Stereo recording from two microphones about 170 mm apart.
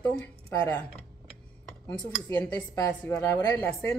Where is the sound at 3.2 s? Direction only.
20° left (ahead or behind).